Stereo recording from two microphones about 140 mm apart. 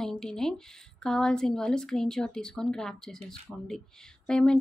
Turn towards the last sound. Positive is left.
turn(degrees=5)  # may be behind; listen again after turning